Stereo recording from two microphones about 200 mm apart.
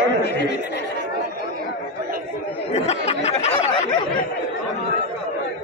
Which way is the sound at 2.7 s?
35° left (ahead or behind).